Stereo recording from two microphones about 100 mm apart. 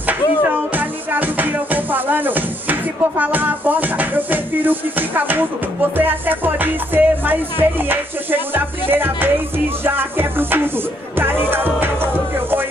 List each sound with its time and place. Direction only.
0.0 s music: 15° right (ahead or behind)